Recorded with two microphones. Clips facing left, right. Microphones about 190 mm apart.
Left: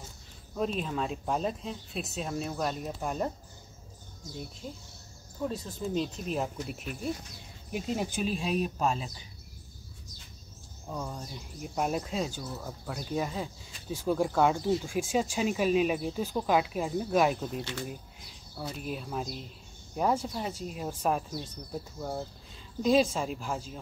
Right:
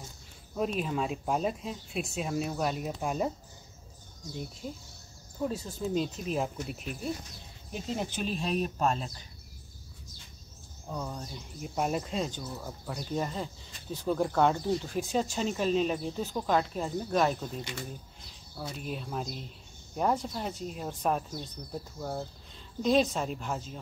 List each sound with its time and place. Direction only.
0.6 s speech: 5° right (ahead or behind)
5.5 s speech: centre (ahead or behind)
10.9 s speech: centre (ahead or behind)
18.6 s speech: centre (ahead or behind)